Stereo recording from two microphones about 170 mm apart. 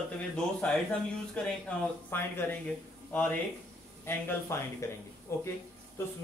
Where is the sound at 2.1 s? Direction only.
10° left (ahead or behind).